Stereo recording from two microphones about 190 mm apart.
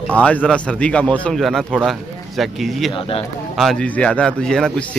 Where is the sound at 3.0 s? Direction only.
30° left (ahead or behind).